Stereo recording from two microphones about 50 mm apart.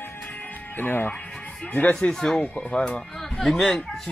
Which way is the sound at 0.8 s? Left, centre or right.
Left.